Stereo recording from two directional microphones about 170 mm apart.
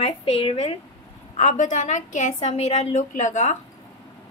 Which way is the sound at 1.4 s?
45° left (ahead or behind).